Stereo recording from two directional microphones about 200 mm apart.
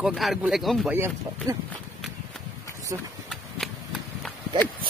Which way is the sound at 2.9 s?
15° right (ahead or behind).